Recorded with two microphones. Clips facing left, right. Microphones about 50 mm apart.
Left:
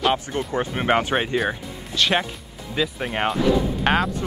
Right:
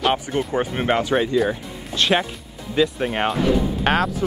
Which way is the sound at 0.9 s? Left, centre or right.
Left.